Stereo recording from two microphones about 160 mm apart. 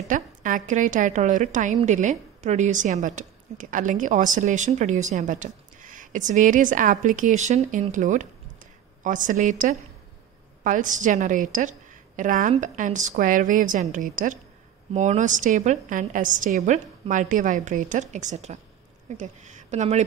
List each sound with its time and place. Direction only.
0.1 s a woman's voice: 55° right (ahead or behind)